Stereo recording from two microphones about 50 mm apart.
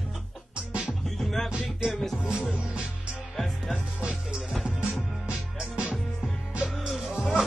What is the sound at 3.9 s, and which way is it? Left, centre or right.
Music, centre.